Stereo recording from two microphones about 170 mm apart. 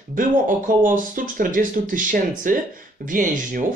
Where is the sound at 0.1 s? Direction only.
50° right (ahead or behind).